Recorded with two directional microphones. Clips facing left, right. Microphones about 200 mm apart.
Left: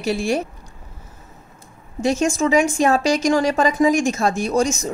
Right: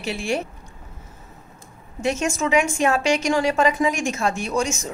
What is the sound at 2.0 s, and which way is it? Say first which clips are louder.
A woman's voice: left 4 dB; 35° left (ahead or behind).